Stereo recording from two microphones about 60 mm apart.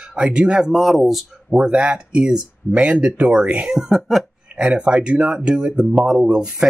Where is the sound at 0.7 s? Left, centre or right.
Centre.